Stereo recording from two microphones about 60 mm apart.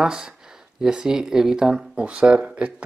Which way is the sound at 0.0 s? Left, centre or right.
Centre.